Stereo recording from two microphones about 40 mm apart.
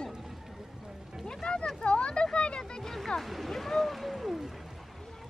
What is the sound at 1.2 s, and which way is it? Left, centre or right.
Music, centre.